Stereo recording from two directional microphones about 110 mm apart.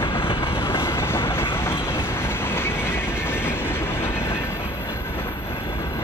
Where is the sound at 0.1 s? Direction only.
55° left (ahead or behind).